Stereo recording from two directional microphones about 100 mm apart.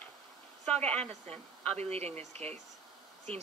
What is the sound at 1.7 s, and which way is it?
Speech, 90° right.